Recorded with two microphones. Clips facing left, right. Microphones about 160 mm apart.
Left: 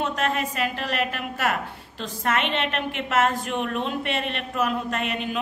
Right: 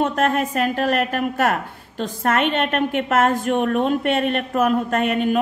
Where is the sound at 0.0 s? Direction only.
50° right (ahead or behind).